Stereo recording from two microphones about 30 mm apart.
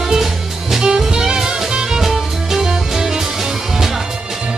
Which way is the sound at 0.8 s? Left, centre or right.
Right.